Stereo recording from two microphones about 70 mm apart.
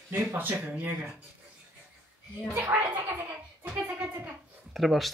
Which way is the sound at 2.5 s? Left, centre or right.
Right.